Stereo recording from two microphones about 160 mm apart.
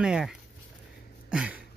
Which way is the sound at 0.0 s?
5° right (ahead or behind).